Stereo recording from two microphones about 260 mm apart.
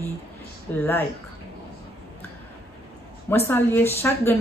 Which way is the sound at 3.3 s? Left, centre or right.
Centre.